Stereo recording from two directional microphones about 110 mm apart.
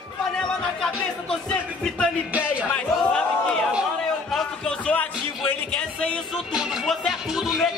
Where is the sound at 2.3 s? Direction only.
10° right (ahead or behind).